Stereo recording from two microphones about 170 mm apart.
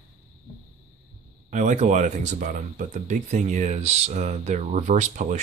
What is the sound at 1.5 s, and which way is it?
Speech, 45° right (ahead or behind).